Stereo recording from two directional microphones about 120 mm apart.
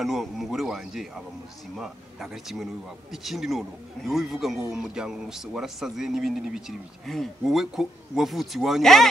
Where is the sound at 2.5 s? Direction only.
Centre (ahead or behind).